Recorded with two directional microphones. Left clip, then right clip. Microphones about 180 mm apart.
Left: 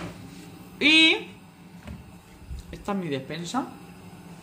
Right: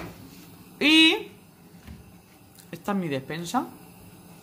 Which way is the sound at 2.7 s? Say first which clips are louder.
Right 1 dB; 40° right (ahead or behind).